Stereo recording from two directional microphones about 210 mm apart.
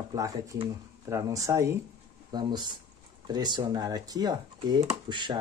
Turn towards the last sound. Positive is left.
turn(degrees=-20)  # may be behind; listen again after turning